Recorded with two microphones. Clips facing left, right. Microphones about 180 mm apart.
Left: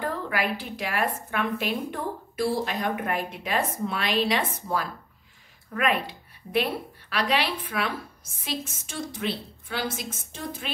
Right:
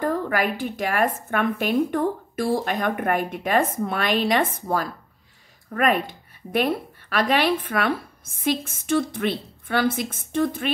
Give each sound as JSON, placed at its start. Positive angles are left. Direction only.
{"t": 0.0, "sound": "a woman's voice", "side_deg": -45}